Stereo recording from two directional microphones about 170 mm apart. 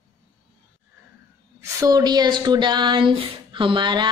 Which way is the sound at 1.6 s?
20° right (ahead or behind).